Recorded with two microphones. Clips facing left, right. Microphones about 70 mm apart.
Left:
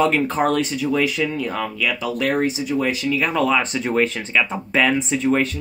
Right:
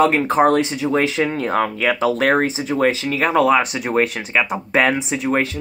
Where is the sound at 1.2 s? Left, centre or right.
Right.